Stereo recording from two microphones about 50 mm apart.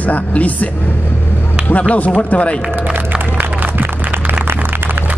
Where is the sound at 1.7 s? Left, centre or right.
Left.